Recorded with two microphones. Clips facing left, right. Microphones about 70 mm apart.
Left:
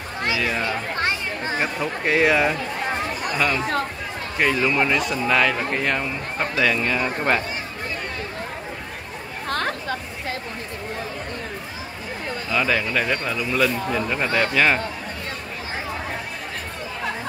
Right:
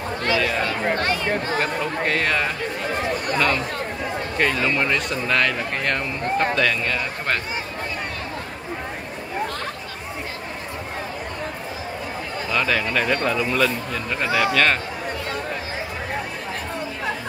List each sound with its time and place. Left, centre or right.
0.2 s chatter: centre
1.6 s a man's voice: centre
4.4 s speech: centre
9.5 s a sound: left
12.4 s speech: centre
14.2 s speech: centre
14.5 s a man's voice: centre